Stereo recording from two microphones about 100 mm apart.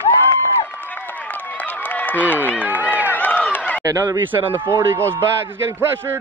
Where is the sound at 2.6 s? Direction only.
15° right (ahead or behind).